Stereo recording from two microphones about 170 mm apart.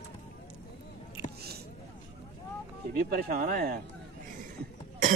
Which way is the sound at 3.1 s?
65° right (ahead or behind).